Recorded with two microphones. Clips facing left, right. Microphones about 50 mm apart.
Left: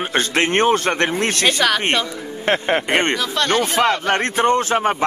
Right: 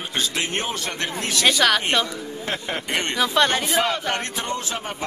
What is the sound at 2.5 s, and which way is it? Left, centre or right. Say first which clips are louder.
Speech: left 10 dB; left.